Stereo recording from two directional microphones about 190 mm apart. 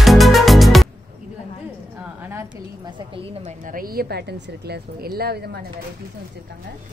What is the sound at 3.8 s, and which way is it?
Speech, 55° right (ahead or behind).